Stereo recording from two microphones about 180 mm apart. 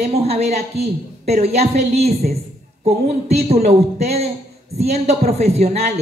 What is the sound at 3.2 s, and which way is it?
A woman's voice, 35° right (ahead or behind).